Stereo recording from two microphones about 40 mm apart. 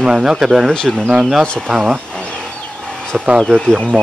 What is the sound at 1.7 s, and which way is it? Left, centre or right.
Speech, centre.